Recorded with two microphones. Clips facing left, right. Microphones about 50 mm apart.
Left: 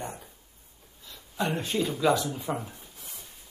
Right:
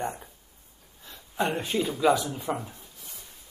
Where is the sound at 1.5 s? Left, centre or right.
Centre.